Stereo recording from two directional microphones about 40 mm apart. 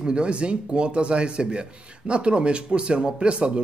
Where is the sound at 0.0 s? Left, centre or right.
Right.